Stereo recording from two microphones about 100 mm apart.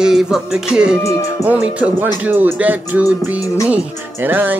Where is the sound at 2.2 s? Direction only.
20° right (ahead or behind).